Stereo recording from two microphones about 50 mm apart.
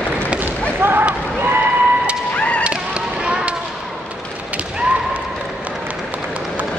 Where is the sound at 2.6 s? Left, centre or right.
Right.